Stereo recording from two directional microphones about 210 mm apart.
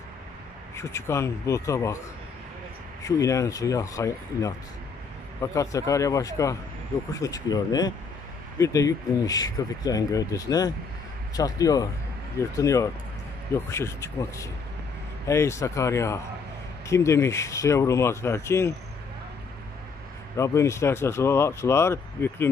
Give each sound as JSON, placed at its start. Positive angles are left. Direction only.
{"t": 0.7, "sound": "speech", "side_deg": 15}
{"t": 3.0, "sound": "speech", "side_deg": 15}
{"t": 20.3, "sound": "speech", "side_deg": 15}